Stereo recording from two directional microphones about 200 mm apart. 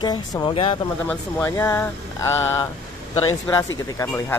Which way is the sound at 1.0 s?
10° left (ahead or behind).